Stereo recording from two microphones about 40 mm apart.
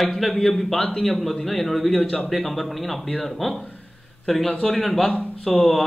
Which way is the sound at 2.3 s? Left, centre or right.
Centre.